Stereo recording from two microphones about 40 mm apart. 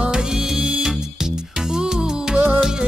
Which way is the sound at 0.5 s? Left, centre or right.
Right.